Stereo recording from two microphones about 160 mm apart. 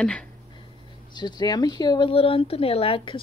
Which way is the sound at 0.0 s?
5° left (ahead or behind).